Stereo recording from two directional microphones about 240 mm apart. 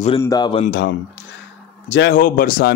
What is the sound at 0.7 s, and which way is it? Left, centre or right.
Speech, left.